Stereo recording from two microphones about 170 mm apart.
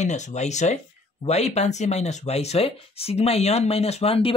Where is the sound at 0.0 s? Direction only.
45° left (ahead or behind).